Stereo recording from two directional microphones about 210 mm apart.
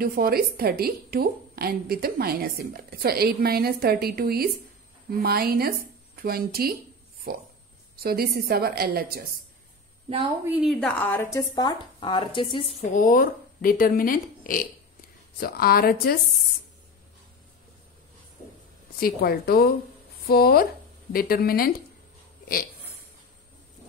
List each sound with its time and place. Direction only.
0.0 s a woman's voice: 45° right (ahead or behind)
7.9 s a woman's voice: 45° right (ahead or behind)
10.4 s speech: 5° right (ahead or behind); by 12.7 s 25° left (ahead or behind)
12.9 s a woman's voice: 40° left (ahead or behind)
18.9 s a woman's voice: 45° left (ahead or behind)